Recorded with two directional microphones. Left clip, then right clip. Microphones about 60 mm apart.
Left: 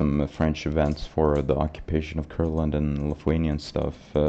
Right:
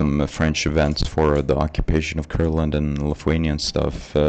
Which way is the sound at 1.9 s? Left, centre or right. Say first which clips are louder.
Right 5 dB; right.